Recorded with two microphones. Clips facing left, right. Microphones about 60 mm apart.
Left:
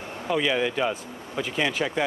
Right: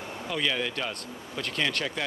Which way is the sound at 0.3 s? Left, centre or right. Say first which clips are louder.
Left 6 dB; centre.